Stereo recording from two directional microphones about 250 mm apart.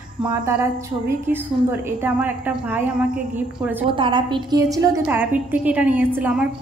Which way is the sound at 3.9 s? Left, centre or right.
Centre.